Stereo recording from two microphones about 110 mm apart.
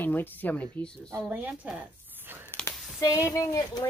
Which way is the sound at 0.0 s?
15° left (ahead or behind).